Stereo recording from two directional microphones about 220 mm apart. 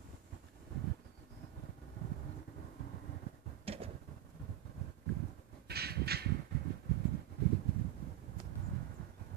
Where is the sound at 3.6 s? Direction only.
25° right (ahead or behind).